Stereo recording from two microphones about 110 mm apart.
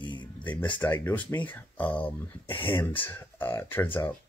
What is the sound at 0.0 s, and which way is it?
Music, 45° left (ahead or behind).